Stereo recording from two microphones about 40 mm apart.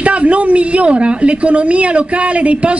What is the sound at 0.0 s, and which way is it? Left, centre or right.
A woman's voice, right.